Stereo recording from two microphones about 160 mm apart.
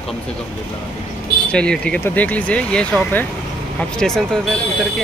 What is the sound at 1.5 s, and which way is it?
Speech, 5° left (ahead or behind).